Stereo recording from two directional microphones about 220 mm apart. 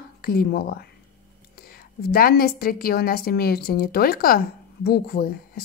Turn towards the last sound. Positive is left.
turn(degrees=45)  # may be behind; listen again after turning